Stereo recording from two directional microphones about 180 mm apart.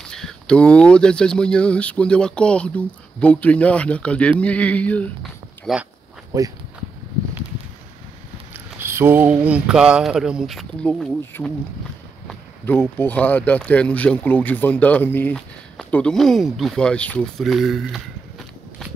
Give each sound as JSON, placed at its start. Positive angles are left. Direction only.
{"t": 0.1, "sound": "speech", "side_deg": 5}
{"t": 6.3, "sound": "speech", "side_deg": -20}
{"t": 8.5, "sound": "speech", "side_deg": -15}
{"t": 12.3, "sound": "a sound", "side_deg": 10}
{"t": 12.9, "sound": "speech", "side_deg": 10}